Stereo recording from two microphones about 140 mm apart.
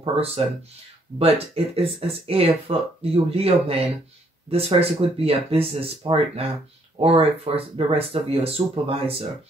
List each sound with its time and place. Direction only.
0.0 s speech: 45° right (ahead or behind)